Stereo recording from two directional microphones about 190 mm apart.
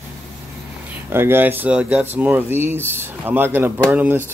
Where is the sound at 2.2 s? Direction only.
10° right (ahead or behind).